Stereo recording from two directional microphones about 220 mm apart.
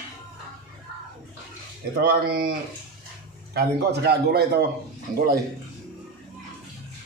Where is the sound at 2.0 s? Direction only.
40° right (ahead or behind).